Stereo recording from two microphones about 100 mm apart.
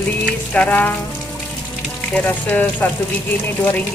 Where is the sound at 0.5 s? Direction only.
15° left (ahead or behind).